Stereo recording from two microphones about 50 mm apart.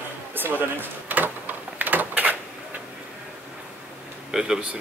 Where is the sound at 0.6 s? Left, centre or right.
Right.